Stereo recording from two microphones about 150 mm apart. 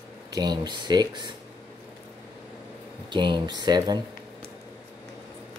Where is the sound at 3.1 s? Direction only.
30° right (ahead or behind).